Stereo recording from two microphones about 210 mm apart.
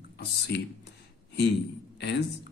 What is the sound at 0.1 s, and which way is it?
Speech, 50° left (ahead or behind).